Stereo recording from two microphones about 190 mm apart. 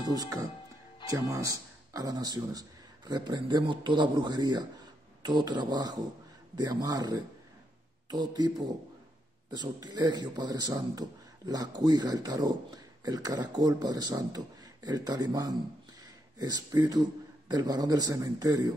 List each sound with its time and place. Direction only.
1.0 s a man's voice: 15° right (ahead or behind)